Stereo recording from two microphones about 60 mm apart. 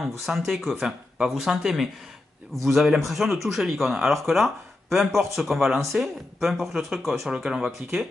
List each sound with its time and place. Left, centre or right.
0.0 s speech: centre
1.1 s a sound: centre
1.4 s speech: centre